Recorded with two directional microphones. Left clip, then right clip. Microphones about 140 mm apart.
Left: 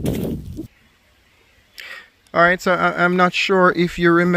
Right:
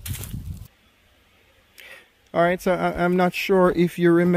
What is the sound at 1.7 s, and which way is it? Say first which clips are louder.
Speech: left 9 dB; 5° right (ahead or behind).